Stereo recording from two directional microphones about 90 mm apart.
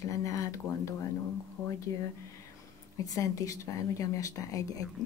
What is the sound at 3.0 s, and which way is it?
Speech, 40° left (ahead or behind).